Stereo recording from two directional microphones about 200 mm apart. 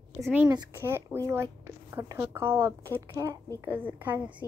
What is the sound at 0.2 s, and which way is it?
A child's voice, 5° right (ahead or behind).